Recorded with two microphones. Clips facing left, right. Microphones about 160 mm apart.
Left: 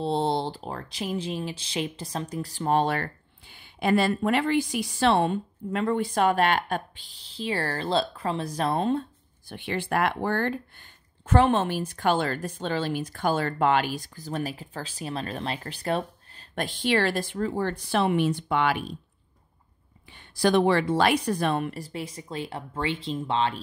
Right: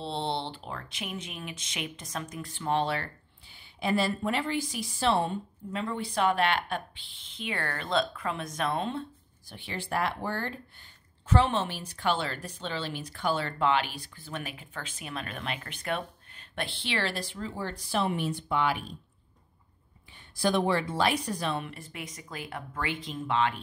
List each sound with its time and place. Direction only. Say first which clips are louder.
0.0 s speech: left 7 dB; 45° left (ahead or behind)
9.5 s speech: left 6 dB; 60° left (ahead or behind)
11.2 s a woman's voice: left 5 dB; 50° left (ahead or behind); by 18.9 s 80° left
20.1 s speech: left 5 dB; 75° left (ahead or behind); by 23.6 s 30° left (ahead or behind)